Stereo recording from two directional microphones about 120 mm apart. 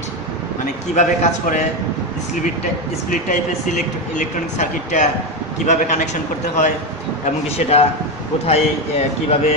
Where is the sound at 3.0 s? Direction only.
90° left.